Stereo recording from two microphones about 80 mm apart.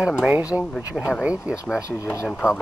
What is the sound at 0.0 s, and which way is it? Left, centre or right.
Speech, centre.